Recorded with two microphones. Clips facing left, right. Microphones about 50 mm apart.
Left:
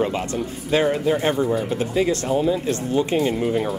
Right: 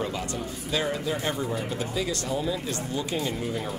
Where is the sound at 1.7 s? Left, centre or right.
Left.